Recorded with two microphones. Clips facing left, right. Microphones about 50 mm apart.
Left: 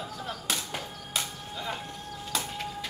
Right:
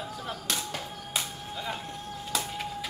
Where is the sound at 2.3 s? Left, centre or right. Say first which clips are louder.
Right 1 dB; centre.